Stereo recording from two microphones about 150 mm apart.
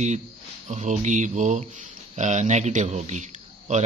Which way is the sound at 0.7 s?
50° right (ahead or behind).